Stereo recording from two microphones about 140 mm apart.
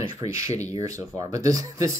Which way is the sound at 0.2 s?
25° right (ahead or behind).